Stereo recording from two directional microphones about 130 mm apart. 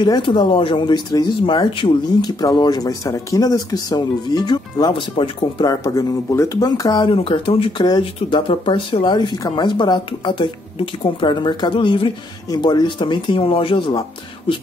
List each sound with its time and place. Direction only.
0.0 s speech: 35° left (ahead or behind)
7.2 s speech: 45° left (ahead or behind)